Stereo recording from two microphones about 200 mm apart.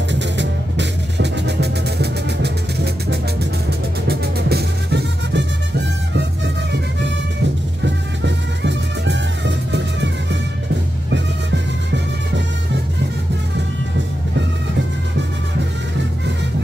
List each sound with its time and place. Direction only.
0.1 s music: 60° right (ahead or behind)
7.8 s music: 60° right (ahead or behind)
11.1 s music: 60° right (ahead or behind)